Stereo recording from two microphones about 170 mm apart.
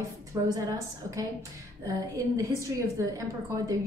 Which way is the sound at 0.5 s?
20° right (ahead or behind).